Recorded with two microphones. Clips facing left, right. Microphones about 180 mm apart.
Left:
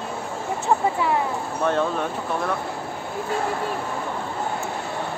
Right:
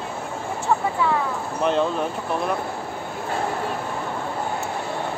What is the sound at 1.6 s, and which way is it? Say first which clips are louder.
Speech: right 1 dB; 20° right (ahead or behind).